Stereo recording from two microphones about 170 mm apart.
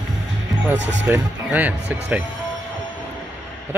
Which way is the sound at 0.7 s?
90° right.